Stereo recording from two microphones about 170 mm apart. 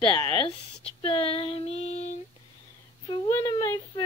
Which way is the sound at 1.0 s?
30° left (ahead or behind).